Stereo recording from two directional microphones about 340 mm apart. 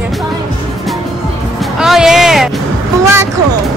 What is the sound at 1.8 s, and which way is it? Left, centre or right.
Speech, centre.